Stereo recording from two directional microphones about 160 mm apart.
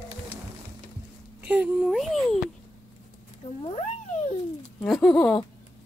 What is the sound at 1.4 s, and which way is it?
Speech, 10° right (ahead or behind).